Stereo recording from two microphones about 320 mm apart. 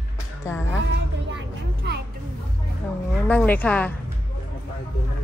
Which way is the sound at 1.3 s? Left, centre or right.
Right.